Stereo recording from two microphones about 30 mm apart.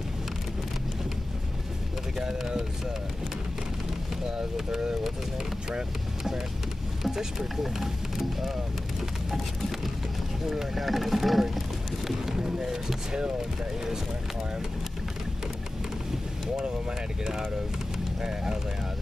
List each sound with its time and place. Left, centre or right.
2.2 s a sound: centre
4.7 s speech: centre
7.1 s speech: centre
10.5 s speech: centre
12.3 s a sound: centre
17.2 s speech: centre